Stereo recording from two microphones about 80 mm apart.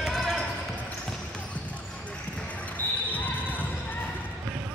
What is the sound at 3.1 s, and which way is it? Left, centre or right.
Basketball bounce, left.